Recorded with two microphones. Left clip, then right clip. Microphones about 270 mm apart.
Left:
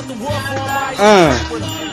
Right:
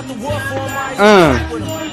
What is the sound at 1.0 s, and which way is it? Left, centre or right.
Speech, centre.